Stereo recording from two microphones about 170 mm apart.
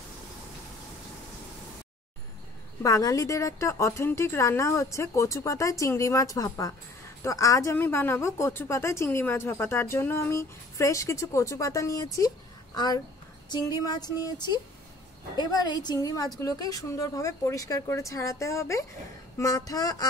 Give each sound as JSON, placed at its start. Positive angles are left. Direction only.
{"t": 2.8, "sound": "a woman's voice", "side_deg": 20}